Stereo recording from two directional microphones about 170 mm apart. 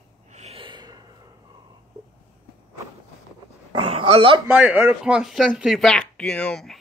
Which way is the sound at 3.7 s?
30° right (ahead or behind).